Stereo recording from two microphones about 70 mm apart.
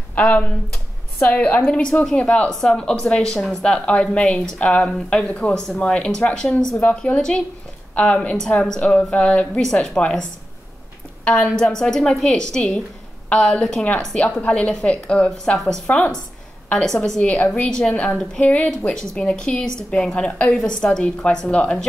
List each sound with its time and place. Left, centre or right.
0.1 s a woman's voice: left
7.2 s a woman's voice: centre
11.2 s a woman's voice: centre